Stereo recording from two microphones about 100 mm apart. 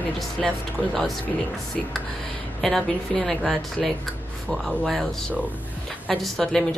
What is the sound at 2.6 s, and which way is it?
A woman's voice, 5° left (ahead or behind).